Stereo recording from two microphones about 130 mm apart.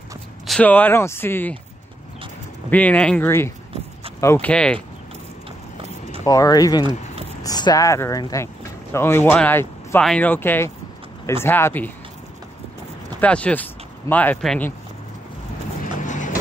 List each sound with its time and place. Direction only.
0.5 s speech: 10° left (ahead or behind)
2.7 s speech: 10° left (ahead or behind)
4.5 s speech: 5° left (ahead or behind)
6.2 s speech: 25° left (ahead or behind)
13.2 s speech: 10° left (ahead or behind)
16.0 s vehicle: 75° left (ahead or behind)